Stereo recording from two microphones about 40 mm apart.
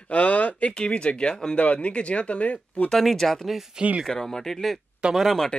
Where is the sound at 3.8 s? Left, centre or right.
Right.